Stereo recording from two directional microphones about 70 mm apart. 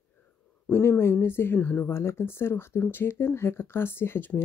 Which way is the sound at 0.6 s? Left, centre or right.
Left.